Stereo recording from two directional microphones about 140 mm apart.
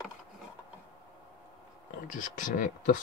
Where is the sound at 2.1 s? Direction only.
65° left (ahead or behind).